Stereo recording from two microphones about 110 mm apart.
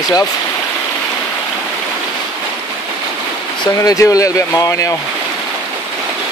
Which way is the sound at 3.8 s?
30° left (ahead or behind).